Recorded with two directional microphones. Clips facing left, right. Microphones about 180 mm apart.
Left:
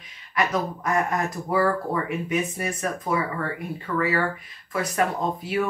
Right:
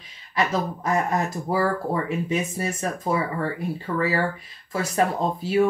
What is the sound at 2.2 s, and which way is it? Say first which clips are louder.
Speech: right 1 dB; 30° right (ahead or behind).